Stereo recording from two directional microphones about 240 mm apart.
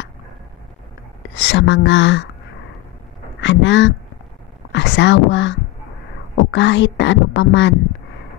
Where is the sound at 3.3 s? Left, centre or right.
Left.